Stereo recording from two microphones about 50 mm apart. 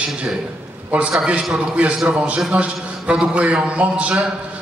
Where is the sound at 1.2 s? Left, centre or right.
Right.